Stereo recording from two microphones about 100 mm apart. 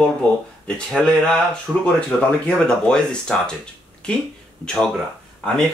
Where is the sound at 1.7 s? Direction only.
15° right (ahead or behind).